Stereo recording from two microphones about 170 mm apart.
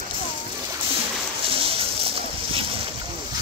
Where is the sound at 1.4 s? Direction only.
35° right (ahead or behind).